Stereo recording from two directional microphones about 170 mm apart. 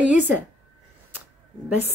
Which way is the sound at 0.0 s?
10° right (ahead or behind).